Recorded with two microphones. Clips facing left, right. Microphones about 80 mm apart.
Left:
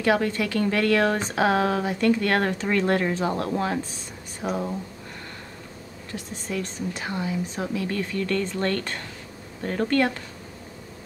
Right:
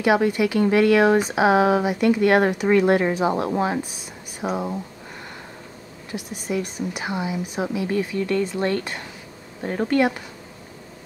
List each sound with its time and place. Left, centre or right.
0.0 s a woman's voice: centre
6.1 s a woman's voice: centre